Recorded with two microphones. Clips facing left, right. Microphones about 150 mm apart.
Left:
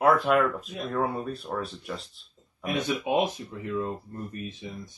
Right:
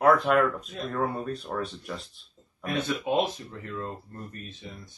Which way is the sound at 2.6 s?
15° left (ahead or behind).